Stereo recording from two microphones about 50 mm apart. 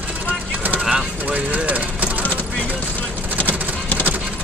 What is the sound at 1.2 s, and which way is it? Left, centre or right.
Vehicle, right.